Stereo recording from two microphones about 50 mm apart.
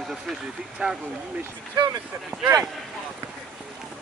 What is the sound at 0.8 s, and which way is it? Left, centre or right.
Speech, right.